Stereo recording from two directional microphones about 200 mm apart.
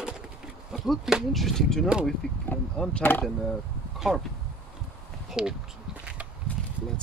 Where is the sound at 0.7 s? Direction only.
Centre (ahead or behind).